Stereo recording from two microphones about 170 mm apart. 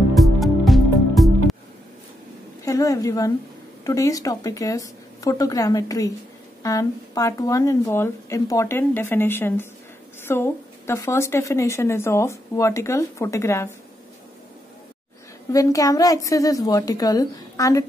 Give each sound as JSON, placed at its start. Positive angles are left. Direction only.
{"t": 0.1, "sound": "music", "side_deg": 0}
{"t": 2.6, "sound": "a woman's voice", "side_deg": 20}
{"t": 15.5, "sound": "a woman's voice", "side_deg": 20}